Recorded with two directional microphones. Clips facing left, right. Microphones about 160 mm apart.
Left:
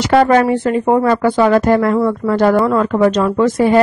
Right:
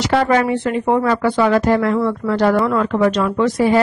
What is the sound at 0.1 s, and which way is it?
Speech, 45° left (ahead or behind).